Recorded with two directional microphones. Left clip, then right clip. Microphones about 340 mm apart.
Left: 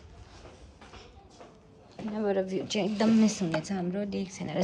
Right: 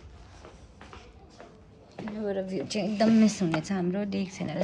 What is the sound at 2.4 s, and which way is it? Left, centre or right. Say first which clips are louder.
A woman's voice: left 1 dB; centre.